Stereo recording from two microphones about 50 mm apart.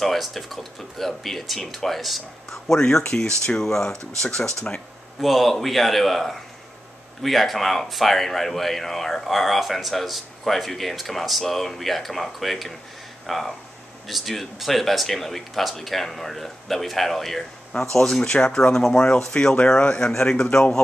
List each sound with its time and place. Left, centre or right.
0.0 s speech: centre
5.2 s speech: centre